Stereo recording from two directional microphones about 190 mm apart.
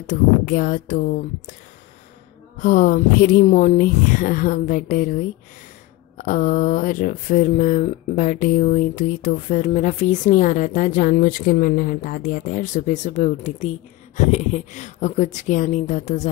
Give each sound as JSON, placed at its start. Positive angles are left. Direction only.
{"t": 0.0, "sound": "speech", "side_deg": 45}
{"t": 2.6, "sound": "speech", "side_deg": 50}
{"t": 6.1, "sound": "speech", "side_deg": 45}